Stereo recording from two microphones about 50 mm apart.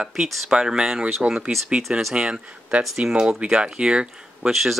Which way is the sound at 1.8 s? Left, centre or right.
Centre.